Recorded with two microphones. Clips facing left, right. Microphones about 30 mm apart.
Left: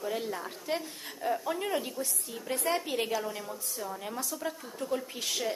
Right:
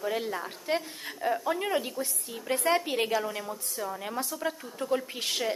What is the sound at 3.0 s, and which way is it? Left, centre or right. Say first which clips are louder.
A woman's voice: right 3 dB; right.